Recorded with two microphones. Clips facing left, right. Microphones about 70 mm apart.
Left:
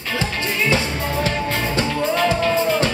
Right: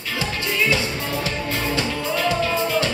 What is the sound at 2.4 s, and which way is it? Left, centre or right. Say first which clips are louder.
Music: left 3 dB; left.